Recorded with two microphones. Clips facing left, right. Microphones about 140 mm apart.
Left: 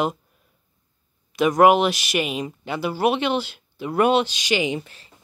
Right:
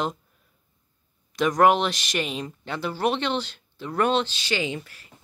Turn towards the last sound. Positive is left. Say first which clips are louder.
# left 5 dB
turn(degrees=25)  # may be behind; listen again after turning